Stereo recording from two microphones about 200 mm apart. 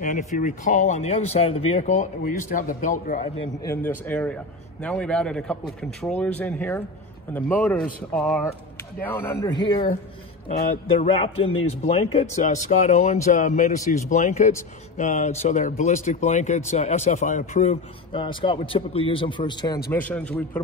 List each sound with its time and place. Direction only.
0.0 s a man's voice: 40° left (ahead or behind)
3.6 s a man's voice: 10° left (ahead or behind)
10.5 s a man's voice: 45° left (ahead or behind)
11.1 s a man's voice: 30° left (ahead or behind)
18.2 s a man's voice: 25° left (ahead or behind)
19.9 s a man's voice: 10° left (ahead or behind)